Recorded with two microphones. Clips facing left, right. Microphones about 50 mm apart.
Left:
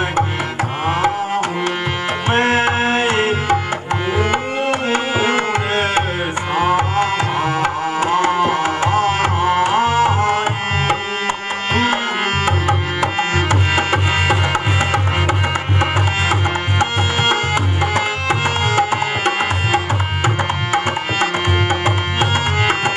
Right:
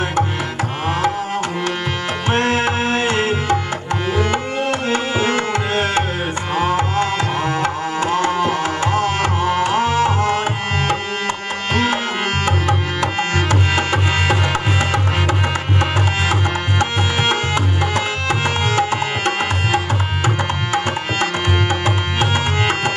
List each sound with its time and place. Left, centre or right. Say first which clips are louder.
2.2 s tabla: left 2 dB; centre
12.4 s music: left 1 dB; centre
21.8 s music: left 1 dB; centre